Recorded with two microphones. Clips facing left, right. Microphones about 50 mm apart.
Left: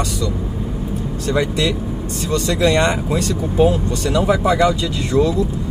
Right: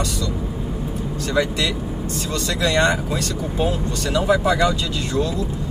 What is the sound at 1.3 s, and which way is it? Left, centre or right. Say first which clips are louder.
Speech: left 3 dB; left.